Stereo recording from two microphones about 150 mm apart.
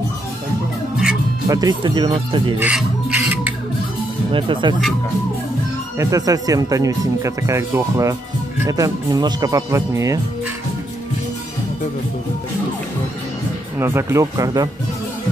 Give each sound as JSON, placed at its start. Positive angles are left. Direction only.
{"t": 1.5, "sound": "speech", "side_deg": -25}
{"t": 2.6, "sound": "music", "side_deg": -10}
{"t": 4.3, "sound": "speech", "side_deg": -35}
{"t": 5.9, "sound": "speech", "side_deg": -20}
{"t": 13.7, "sound": "speech", "side_deg": -15}